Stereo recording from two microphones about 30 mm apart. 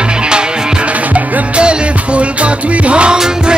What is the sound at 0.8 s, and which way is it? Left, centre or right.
Music, right.